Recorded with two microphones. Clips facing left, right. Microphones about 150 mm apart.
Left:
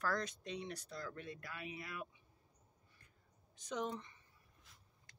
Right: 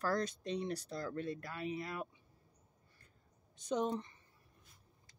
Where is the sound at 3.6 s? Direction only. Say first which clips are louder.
Right 6 dB; 30° right (ahead or behind).